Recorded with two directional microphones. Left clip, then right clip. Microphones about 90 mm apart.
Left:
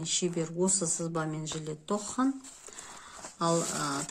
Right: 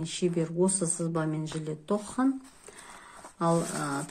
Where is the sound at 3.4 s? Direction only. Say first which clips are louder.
Right 1 dB; 20° left (ahead or behind).